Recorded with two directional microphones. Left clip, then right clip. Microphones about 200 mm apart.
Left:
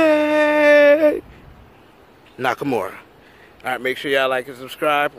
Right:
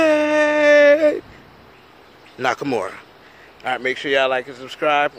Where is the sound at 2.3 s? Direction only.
5° left (ahead or behind).